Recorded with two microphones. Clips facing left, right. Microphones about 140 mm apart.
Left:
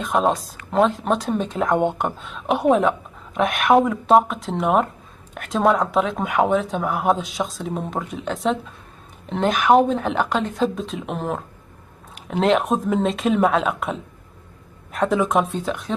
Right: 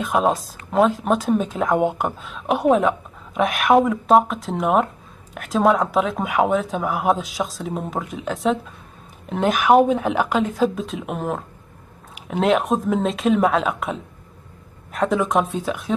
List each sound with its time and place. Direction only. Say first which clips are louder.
0.0 s speech: even; centre (ahead or behind)